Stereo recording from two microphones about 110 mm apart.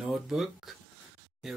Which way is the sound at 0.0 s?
5° right (ahead or behind).